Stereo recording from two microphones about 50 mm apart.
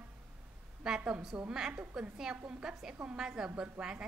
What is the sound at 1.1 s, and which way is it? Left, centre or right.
A woman's voice, centre.